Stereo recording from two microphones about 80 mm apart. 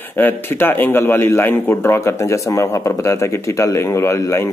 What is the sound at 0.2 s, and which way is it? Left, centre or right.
Speech, left.